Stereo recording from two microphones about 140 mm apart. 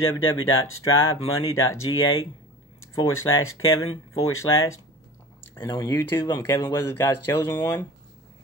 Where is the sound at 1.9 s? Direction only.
30° left (ahead or behind).